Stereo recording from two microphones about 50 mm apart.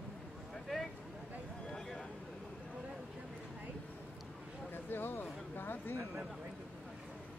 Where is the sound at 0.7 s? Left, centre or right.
Centre.